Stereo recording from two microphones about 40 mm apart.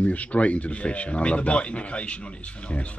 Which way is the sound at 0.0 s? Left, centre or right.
Left.